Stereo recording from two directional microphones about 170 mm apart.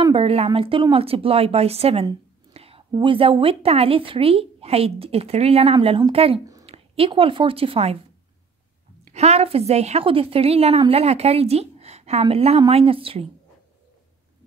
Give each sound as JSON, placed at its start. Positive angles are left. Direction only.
{"t": 0.1, "sound": "a woman's voice", "side_deg": -35}
{"t": 9.1, "sound": "a woman's voice", "side_deg": -40}